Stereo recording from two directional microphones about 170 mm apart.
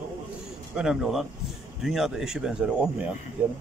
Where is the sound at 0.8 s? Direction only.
Centre (ahead or behind).